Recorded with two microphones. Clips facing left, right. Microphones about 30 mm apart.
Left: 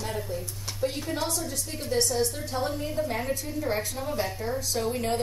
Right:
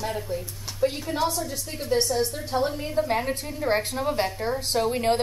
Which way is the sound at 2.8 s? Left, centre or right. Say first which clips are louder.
Right 4 dB; right.